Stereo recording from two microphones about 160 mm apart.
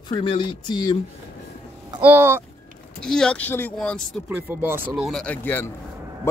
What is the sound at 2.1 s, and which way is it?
Speech, 15° right (ahead or behind).